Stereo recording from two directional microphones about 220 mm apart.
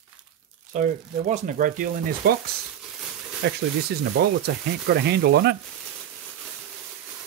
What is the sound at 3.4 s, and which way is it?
Speech, 50° right (ahead or behind).